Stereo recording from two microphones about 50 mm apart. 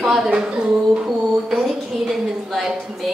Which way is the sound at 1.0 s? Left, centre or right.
Centre.